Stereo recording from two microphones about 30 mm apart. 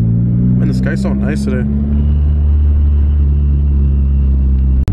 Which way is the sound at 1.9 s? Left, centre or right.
Centre.